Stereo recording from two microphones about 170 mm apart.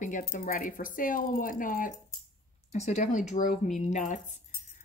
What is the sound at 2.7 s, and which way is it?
Speech, 45° left (ahead or behind).